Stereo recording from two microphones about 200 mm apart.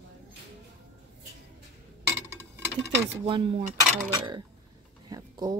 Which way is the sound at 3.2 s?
25° right (ahead or behind).